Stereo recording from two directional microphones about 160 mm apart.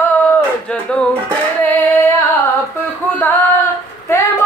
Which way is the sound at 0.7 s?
5° left (ahead or behind).